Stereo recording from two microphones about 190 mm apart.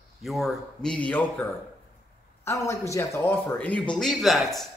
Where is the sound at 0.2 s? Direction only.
Centre (ahead or behind).